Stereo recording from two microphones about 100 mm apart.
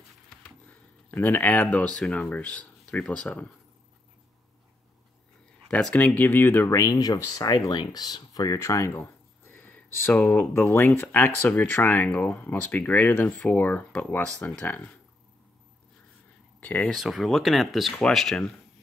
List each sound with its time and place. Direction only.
1.1 s speech: 20° left (ahead or behind)
5.9 s speech: 15° left (ahead or behind)
7.4 s speech: 40° left (ahead or behind); by 14.8 s 15° left (ahead or behind)
16.5 s speech: 15° left (ahead or behind)
16.9 s speech: centre (ahead or behind)